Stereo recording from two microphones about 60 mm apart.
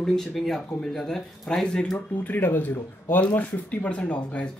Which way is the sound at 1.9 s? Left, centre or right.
Left.